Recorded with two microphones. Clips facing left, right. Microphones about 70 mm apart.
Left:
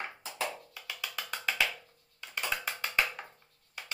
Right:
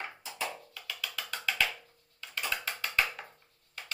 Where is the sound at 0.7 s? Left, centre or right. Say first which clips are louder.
Even; centre.